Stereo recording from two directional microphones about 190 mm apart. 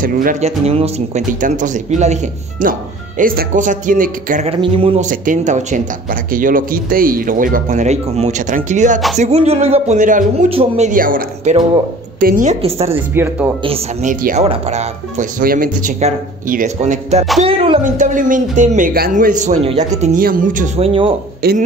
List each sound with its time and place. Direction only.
0.0 s speech: 45° right (ahead or behind)
4.5 s speech: 30° right (ahead or behind)
5.0 s speech: 45° right (ahead or behind)
10.5 s speech: 30° right (ahead or behind)
10.9 s speech: 45° right (ahead or behind)
12.6 s speech: 30° right (ahead or behind)
13.1 s speech: 10° right (ahead or behind)
13.7 s speech: 30° right (ahead or behind)
17.8 s speech: 45° right (ahead or behind)
21.4 s speech: 55° right (ahead or behind)